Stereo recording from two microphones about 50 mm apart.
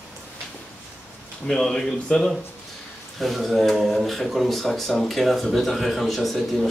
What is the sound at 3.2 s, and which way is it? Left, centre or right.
Speech, centre.